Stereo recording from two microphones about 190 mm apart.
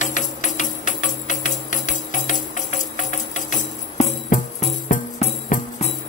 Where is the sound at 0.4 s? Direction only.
40° left (ahead or behind).